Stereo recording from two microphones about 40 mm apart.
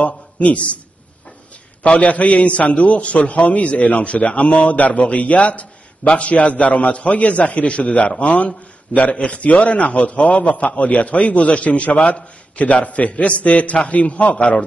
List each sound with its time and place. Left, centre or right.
0.0 s a man's voice: left
1.8 s a man's voice: left